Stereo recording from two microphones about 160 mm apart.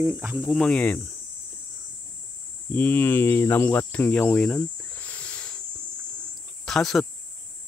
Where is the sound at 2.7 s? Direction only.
15° left (ahead or behind).